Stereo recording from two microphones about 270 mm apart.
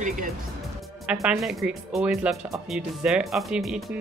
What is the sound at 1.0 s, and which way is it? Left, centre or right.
Speech, centre.